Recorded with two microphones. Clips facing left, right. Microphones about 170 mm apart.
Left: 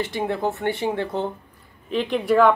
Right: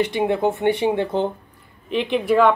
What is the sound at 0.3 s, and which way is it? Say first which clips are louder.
Speech: right 5 dB; 20° right (ahead or behind).